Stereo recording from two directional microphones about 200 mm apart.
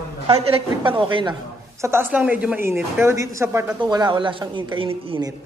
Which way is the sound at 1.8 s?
10° right (ahead or behind).